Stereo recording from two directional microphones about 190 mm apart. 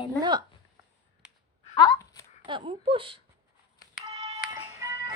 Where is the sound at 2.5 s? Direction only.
30° right (ahead or behind).